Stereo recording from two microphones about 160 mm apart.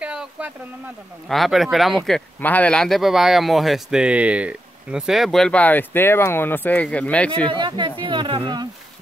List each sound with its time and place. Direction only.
0.0 s a sound: 5° right (ahead or behind)
1.3 s speech: centre (ahead or behind)
7.4 s speech: 30° right (ahead or behind)